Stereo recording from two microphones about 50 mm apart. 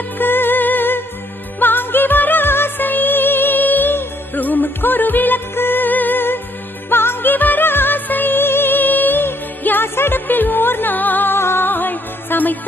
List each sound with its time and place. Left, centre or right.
0.2 s music: left
11.3 s music: left